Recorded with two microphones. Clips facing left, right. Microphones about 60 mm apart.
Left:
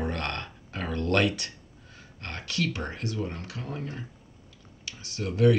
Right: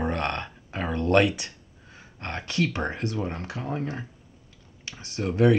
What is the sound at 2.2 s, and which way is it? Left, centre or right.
Speech, right.